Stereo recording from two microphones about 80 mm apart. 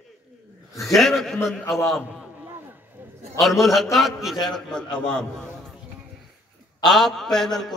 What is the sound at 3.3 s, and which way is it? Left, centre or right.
A man's voice, centre.